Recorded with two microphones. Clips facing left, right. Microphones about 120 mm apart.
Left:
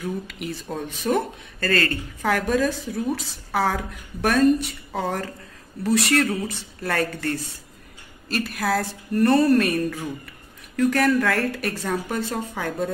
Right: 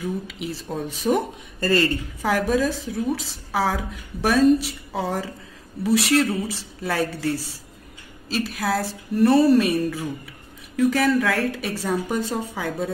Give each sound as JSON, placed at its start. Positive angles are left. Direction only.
{"t": 0.0, "sound": "a woman's voice", "side_deg": 0}